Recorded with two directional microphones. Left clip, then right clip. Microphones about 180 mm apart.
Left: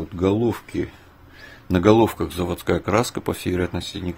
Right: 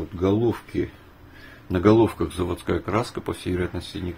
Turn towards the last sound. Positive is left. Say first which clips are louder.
# left 3 dB
turn(degrees=50)  # may be behind; listen again after turning